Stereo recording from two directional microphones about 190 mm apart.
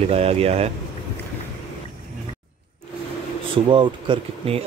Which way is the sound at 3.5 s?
25° right (ahead or behind).